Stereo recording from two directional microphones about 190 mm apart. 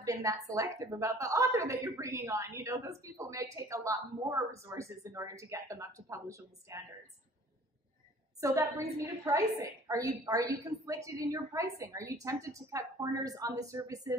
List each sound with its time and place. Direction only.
0.0 s a woman's voice: 15° right (ahead or behind)
8.4 s a woman's voice: 15° right (ahead or behind)